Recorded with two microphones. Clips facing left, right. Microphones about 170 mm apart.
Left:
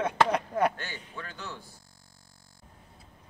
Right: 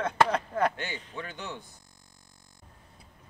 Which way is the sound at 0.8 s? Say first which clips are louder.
Right 3 dB; 15° right (ahead or behind).